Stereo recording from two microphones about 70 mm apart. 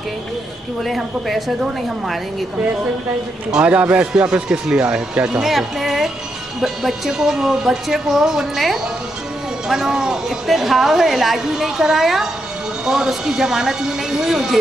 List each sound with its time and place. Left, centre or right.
0.8 s a woman's voice: centre
3.5 s a man's voice: centre